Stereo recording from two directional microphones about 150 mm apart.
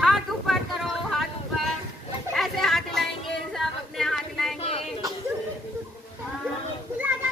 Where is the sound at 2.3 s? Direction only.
Centre (ahead or behind).